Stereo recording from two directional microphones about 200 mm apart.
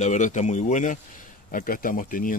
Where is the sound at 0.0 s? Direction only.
40° left (ahead or behind).